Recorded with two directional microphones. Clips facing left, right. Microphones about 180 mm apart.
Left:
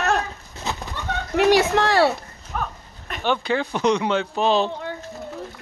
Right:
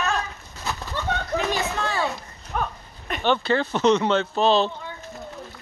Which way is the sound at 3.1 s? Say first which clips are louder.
Right 1 dB; 10° left (ahead or behind).